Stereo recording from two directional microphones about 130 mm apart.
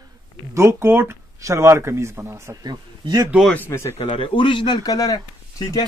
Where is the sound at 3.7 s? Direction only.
20° left (ahead or behind).